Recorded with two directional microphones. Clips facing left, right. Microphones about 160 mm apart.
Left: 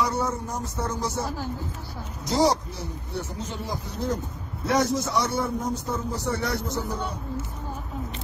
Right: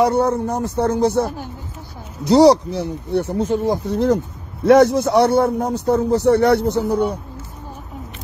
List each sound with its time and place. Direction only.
0.0 s a man's voice: 60° right (ahead or behind)
2.2 s a man's voice: 70° right (ahead or behind)